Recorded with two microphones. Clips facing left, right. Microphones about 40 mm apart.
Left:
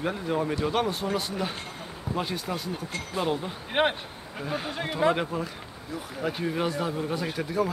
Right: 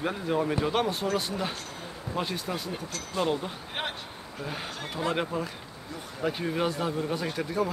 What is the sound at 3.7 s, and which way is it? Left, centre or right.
Speech, left.